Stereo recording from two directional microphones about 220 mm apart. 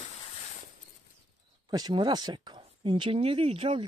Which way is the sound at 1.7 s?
20° right (ahead or behind).